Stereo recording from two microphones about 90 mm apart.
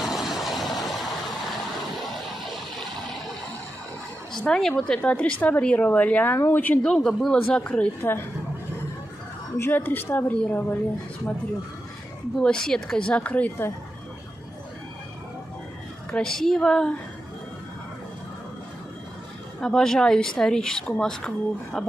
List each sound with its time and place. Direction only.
0.0 s vehicle: 5° right (ahead or behind)
4.3 s a woman's voice: 5° left (ahead or behind)
8.0 s speech: 25° left (ahead or behind)
9.6 s speech: 20° left (ahead or behind)
12.4 s a woman's voice: 10° left (ahead or behind)
16.1 s a woman's voice: 5° left (ahead or behind)
19.6 s a woman's voice: 5° left (ahead or behind)